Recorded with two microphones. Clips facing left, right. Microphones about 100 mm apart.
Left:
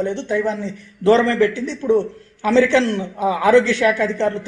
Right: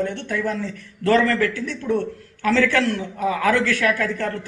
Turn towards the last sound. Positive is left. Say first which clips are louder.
# left 5 dB
turn(degrees=20)  # may be behind; listen again after turning